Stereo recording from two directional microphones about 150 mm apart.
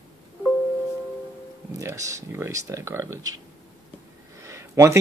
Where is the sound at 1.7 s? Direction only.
20° right (ahead or behind).